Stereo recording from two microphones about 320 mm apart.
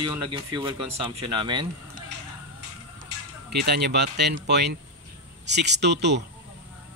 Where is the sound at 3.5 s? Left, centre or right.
Right.